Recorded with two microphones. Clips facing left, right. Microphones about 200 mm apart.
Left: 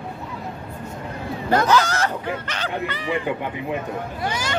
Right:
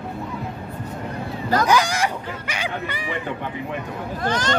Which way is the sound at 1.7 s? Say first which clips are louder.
Even; 15° right (ahead or behind).